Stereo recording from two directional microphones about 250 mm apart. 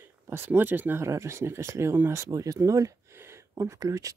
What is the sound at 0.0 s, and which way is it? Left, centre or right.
Speech, centre.